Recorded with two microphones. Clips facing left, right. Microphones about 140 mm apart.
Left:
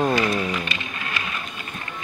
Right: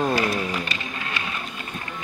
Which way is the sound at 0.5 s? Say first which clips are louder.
Even; 35° right (ahead or behind).